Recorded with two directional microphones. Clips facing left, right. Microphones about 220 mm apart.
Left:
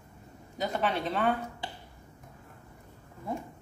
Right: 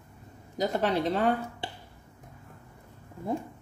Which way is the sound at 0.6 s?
35° right (ahead or behind).